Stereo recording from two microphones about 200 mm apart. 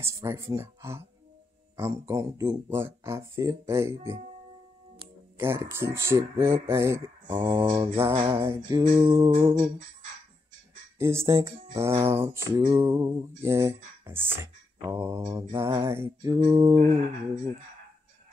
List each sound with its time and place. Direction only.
0.0 s speech: 15° right (ahead or behind)
5.4 s speech: 10° right (ahead or behind)
8.3 s mantra: 15° right (ahead or behind)
11.0 s speech: 15° right (ahead or behind)
15.2 s mantra: 20° right (ahead or behind)